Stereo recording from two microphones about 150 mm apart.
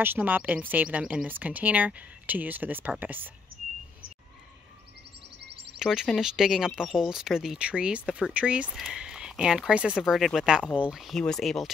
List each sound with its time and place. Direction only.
0.0 s speech: 15° right (ahead or behind)
5.4 s a sound: 90° right
5.8 s speech: 5° right (ahead or behind)